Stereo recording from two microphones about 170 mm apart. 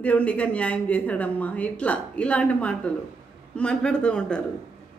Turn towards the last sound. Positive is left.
turn(degrees=5)  # may be behind; listen again after turning